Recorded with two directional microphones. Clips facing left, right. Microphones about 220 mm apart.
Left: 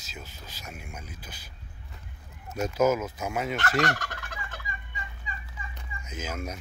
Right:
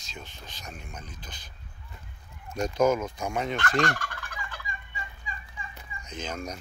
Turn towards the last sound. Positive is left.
turn(degrees=5)  # may be behind; listen again after turning